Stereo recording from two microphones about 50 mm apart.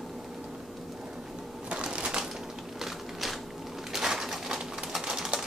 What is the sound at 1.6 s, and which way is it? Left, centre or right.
Crushing, right.